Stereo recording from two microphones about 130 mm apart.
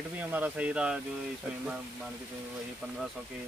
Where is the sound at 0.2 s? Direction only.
15° right (ahead or behind).